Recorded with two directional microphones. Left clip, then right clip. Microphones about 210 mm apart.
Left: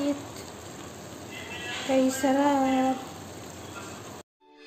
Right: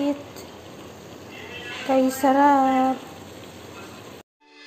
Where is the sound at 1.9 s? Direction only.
10° right (ahead or behind).